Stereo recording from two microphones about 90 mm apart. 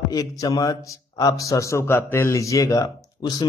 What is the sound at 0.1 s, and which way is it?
A man's voice, 45° left (ahead or behind).